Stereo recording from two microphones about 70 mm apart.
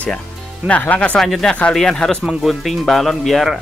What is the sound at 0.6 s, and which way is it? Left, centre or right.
Speech, right.